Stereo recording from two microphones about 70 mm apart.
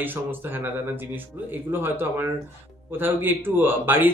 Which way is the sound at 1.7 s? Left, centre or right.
Right.